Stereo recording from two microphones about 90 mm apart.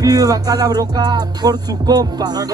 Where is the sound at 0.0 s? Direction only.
45° right (ahead or behind).